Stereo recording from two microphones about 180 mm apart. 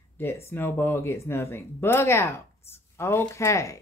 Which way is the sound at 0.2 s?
15° left (ahead or behind).